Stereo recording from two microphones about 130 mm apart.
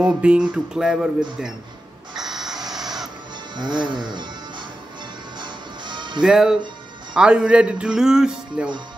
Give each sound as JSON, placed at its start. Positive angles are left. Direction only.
{"t": 0.0, "sound": "music", "side_deg": -5}
{"t": 2.1, "sound": "a sound", "side_deg": -5}
{"t": 2.7, "sound": "music", "side_deg": -5}
{"t": 3.5, "sound": "speech", "side_deg": -35}
{"t": 5.4, "sound": "music", "side_deg": -35}
{"t": 6.2, "sound": "music", "side_deg": -5}
{"t": 7.2, "sound": "speech", "side_deg": -5}